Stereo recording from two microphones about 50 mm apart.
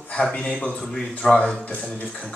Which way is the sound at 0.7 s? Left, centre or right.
Centre.